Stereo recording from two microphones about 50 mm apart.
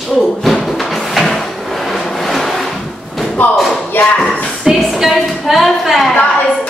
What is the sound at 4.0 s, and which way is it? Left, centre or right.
Speech, left.